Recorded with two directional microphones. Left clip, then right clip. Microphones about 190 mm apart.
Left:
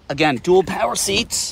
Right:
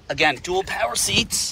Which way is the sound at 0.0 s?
30° left (ahead or behind).